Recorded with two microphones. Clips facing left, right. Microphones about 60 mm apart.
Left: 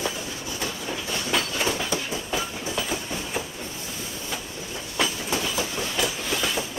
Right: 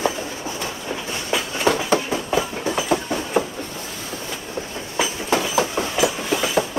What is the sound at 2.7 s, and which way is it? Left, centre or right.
Train, right.